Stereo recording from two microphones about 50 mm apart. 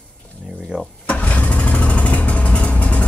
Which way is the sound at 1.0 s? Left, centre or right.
Left.